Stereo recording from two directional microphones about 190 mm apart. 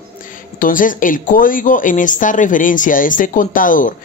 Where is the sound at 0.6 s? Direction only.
45° left (ahead or behind).